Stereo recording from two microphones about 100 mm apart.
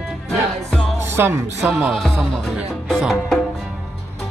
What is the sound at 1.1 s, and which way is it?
Speech, 25° right (ahead or behind).